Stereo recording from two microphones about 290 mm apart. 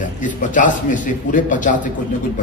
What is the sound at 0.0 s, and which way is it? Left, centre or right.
A man's voice, left.